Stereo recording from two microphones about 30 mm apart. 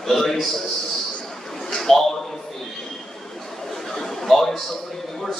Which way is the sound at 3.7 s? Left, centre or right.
Centre.